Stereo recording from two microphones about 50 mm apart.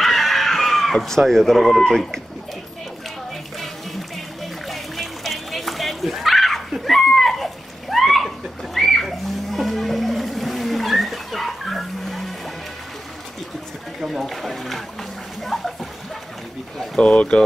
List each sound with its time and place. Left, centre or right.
0.0 s chicken: centre
0.9 s speech: centre
4.6 s dog: centre
8.7 s music: centre
14.0 s speech: centre
15.4 s a sound: centre
17.0 s speech: left